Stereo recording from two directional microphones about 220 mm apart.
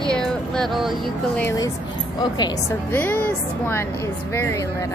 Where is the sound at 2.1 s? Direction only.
20° left (ahead or behind).